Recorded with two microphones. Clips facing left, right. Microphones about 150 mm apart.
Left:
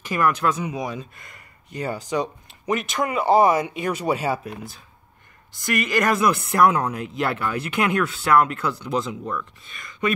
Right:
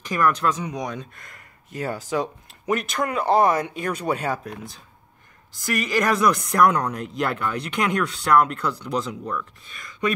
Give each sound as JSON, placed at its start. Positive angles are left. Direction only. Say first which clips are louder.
{"t": 0.0, "sound": "speech", "louder": "even", "side_deg": 5}